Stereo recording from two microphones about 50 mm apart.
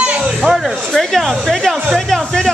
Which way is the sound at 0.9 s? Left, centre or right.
Centre.